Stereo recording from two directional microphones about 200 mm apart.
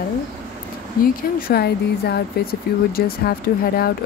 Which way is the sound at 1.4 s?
50° left (ahead or behind).